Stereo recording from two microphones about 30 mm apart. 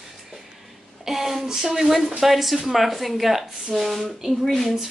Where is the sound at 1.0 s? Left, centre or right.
Centre.